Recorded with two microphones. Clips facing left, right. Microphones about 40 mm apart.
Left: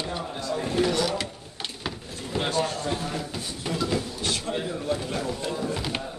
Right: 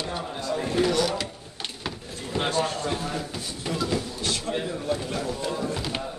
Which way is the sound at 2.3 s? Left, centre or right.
Centre.